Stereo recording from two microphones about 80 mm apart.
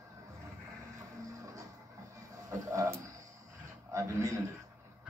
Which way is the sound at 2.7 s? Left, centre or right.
Right.